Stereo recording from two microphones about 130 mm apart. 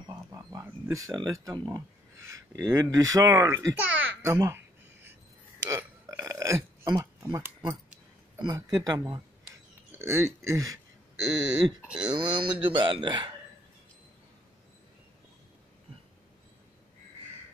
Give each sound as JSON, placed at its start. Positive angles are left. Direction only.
{"t": 0.3, "sound": "a child's voice", "side_deg": -25}
{"t": 5.7, "sound": "burping", "side_deg": -25}
{"t": 6.9, "sound": "speech", "side_deg": -30}
{"t": 11.8, "sound": "speech", "side_deg": -5}
{"t": 12.1, "sound": "speech", "side_deg": -40}